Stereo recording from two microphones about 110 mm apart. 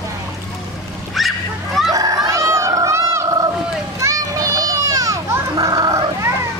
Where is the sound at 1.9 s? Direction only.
35° right (ahead or behind).